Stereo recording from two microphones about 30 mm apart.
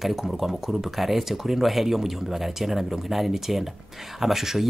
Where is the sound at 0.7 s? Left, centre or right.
Centre.